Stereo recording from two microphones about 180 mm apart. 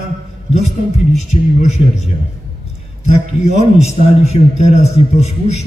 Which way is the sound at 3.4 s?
40° left (ahead or behind).